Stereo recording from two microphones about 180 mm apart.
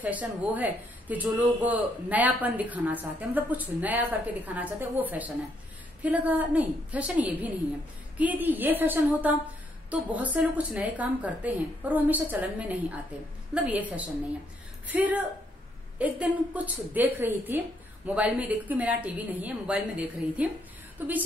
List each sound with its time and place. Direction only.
0.0 s speech: 10° right (ahead or behind)